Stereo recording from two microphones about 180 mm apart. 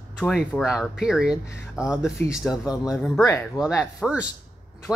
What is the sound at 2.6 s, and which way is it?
Speech, 20° left (ahead or behind).